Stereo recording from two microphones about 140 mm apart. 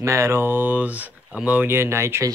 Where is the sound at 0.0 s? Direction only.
20° right (ahead or behind).